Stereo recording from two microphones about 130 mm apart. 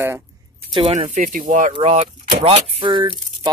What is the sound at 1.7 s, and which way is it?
Speech, 55° right (ahead or behind).